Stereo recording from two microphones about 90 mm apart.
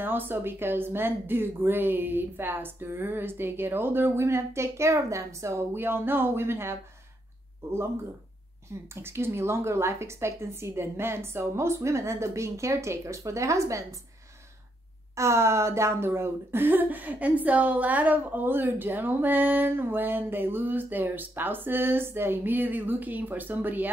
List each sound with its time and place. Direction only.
0.0 s speech: 25° right (ahead or behind)
8.8 s a woman's voice: 30° right (ahead or behind)
15.1 s speech: 30° right (ahead or behind)